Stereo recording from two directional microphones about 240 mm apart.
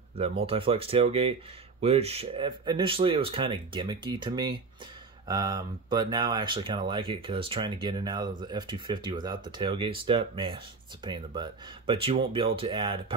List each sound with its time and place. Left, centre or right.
0.4 s speech: right